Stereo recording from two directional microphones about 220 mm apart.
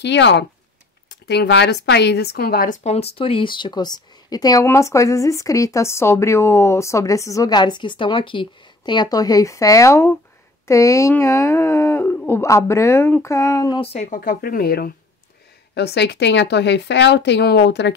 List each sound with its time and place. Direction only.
0.0 s speech: 50° left (ahead or behind)